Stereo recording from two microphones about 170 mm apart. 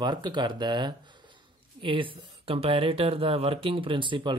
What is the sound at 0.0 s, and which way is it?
Speech, 25° right (ahead or behind).